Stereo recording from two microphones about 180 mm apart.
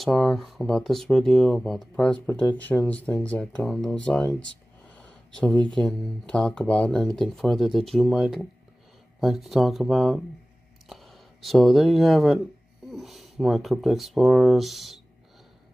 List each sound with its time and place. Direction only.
0.0 s speech: centre (ahead or behind)
4.8 s a sound: 5° left (ahead or behind)
5.8 s speech: 5° left (ahead or behind)